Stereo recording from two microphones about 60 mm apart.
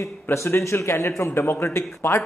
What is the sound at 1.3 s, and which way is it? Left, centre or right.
Speech, left.